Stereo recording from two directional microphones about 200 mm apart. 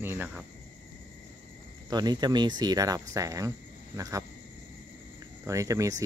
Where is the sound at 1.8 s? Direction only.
20° right (ahead or behind).